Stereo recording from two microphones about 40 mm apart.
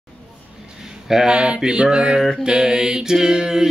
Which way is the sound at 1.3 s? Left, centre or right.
Right.